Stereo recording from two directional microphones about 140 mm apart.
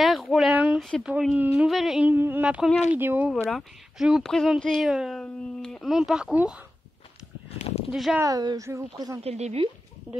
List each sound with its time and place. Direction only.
0.0 s a sound: centre (ahead or behind)
1.1 s speech: 10° right (ahead or behind)
3.4 s speech: centre (ahead or behind)
7.5 s a sound: 50° left (ahead or behind)
7.9 s speech: 5° right (ahead or behind)
8.2 s a woman's voice: 25° right (ahead or behind)
9.2 s a woman's voice: 50° right (ahead or behind)